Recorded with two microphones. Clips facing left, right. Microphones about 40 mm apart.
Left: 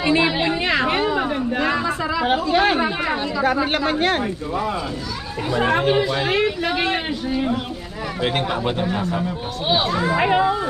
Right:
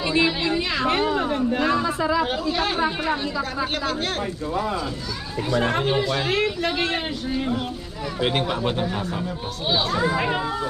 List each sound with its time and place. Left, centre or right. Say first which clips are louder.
0.0 s a woman's voice: left 3 dB; centre
0.8 s speech: left 1 dB; centre
1.9 s speech: right 1 dB; centre
2.5 s a woman's voice: left 5 dB; left
5.5 s speech: left 4 dB; left
9.7 s a woman's voice: left 2 dB; centre